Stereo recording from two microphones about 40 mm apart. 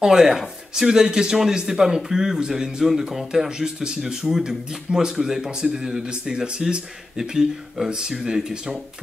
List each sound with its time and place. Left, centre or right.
0.0 s a man's voice: centre